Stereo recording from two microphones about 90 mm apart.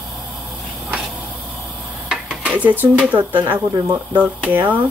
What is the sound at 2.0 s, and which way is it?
Dishes, 10° right (ahead or behind).